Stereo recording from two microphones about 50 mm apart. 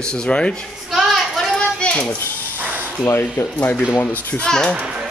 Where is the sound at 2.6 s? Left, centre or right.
Right.